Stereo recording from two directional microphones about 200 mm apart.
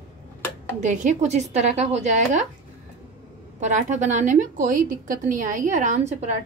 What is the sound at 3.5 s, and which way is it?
A woman's voice, 35° right (ahead or behind).